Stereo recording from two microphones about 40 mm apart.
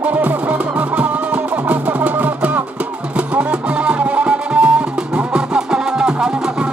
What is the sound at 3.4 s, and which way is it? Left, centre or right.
Music, right.